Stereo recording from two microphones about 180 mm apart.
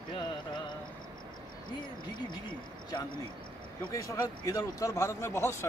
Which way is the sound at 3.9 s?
20° left (ahead or behind).